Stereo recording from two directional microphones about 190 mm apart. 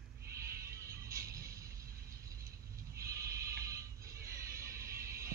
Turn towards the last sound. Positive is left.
turn(degrees=-15)  # may be behind; listen again after turning